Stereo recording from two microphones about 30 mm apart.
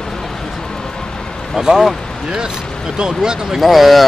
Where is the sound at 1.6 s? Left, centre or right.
Centre.